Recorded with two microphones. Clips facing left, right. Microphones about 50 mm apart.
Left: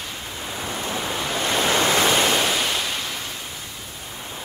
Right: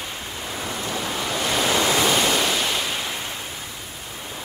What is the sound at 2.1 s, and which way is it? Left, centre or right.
Pink noise, centre.